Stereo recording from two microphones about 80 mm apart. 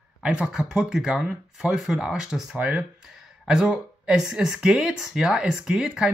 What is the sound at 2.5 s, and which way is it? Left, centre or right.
Speech, centre.